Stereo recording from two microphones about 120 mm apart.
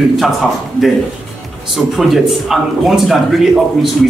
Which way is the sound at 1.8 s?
Centre (ahead or behind).